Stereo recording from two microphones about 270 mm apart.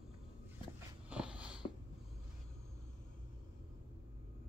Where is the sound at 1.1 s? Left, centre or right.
Centre.